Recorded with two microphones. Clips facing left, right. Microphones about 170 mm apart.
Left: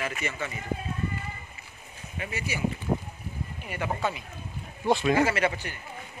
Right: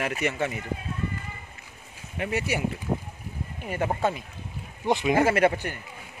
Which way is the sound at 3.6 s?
45° right (ahead or behind).